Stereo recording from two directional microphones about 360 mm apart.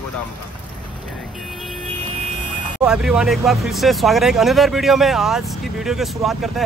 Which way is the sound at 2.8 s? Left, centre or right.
Centre.